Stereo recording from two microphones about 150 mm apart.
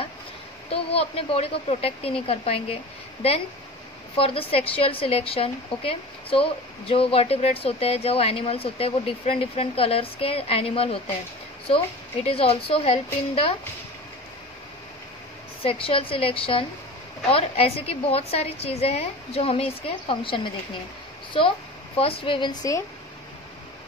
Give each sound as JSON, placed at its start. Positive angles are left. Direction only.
{"t": 0.7, "sound": "a woman's voice", "side_deg": 40}
{"t": 15.6, "sound": "a woman's voice", "side_deg": 40}